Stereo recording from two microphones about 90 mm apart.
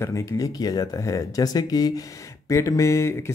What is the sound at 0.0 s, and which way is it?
Speech, 35° left (ahead or behind).